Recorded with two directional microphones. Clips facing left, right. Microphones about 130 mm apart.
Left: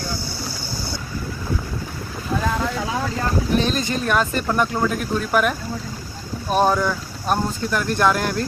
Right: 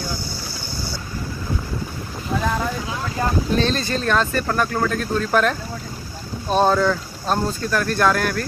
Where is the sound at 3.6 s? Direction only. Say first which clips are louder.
Right 1 dB; 15° left (ahead or behind).